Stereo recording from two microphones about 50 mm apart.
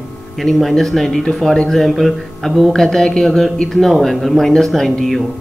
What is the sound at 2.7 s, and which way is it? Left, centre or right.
Speech, centre.